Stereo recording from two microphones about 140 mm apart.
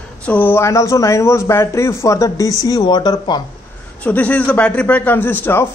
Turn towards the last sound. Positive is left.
turn(degrees=15)  # may be behind; listen again after turning